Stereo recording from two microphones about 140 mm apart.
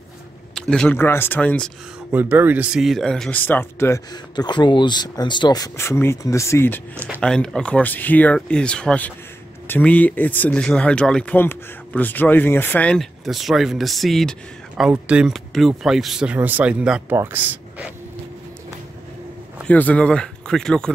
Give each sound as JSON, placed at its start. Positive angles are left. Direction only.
{"t": 0.6, "sound": "speech", "side_deg": 5}
{"t": 2.0, "sound": "speech", "side_deg": -15}
{"t": 4.1, "sound": "speech", "side_deg": 30}
{"t": 19.7, "sound": "speech", "side_deg": 10}